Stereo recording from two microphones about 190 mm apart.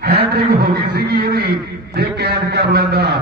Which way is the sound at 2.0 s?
60° right (ahead or behind).